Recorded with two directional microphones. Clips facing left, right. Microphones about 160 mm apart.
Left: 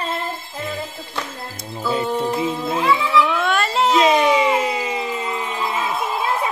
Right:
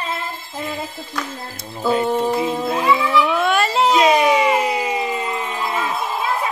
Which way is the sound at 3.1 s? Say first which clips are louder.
Right 1 dB; 5° right (ahead or behind).